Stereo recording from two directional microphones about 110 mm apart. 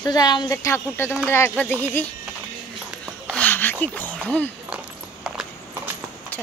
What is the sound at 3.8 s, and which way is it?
Speech, 15° left (ahead or behind).